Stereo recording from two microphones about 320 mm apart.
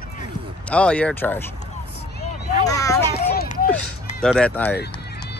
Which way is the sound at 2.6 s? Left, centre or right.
Centre.